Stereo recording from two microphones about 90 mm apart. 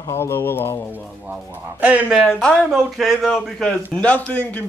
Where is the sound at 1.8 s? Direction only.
15° right (ahead or behind).